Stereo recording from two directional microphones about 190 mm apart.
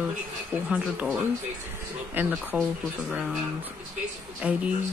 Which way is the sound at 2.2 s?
10° right (ahead or behind).